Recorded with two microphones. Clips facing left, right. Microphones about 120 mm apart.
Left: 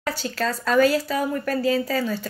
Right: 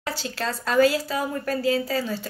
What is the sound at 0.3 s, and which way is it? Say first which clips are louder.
A woman's voice: left 4 dB; 25° right (ahead or behind).